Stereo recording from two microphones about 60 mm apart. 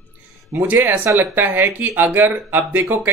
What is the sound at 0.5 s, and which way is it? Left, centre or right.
Speech, right.